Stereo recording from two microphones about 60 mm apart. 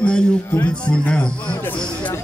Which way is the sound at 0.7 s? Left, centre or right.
Centre.